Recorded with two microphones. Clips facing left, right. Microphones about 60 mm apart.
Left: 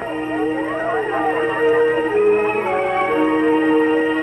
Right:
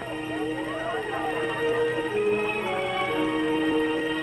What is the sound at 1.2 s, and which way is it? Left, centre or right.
Music, left.